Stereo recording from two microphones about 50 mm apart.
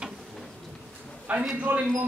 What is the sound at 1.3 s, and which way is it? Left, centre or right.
Speech, right.